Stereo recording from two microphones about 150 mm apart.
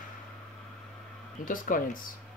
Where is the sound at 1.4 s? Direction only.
65° left (ahead or behind).